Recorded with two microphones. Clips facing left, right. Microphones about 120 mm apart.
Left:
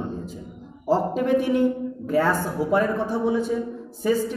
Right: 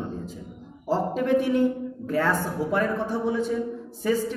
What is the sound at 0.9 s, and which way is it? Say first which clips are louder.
A man's voice: left 2 dB; 15° left (ahead or behind).